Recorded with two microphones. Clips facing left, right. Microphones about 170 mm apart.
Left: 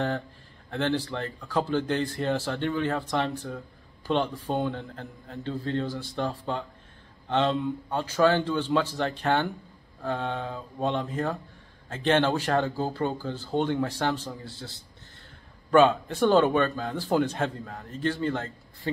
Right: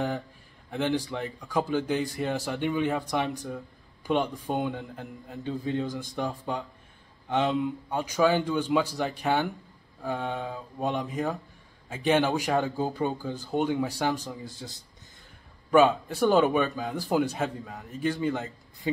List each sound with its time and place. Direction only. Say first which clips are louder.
0.7 s speech: even; 10° right (ahead or behind)
15.7 s speech: left 1 dB; 10° right (ahead or behind)